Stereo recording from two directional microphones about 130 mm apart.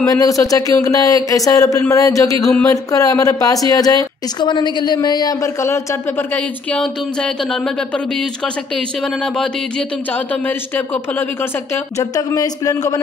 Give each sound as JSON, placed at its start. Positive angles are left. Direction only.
{"t": 0.0, "sound": "a woman's voice", "side_deg": 25}
{"t": 2.4, "sound": "speech", "side_deg": 10}
{"t": 2.7, "sound": "a woman's voice", "side_deg": 25}
{"t": 9.0, "sound": "speech", "side_deg": 5}
{"t": 11.7, "sound": "a woman's voice", "side_deg": 25}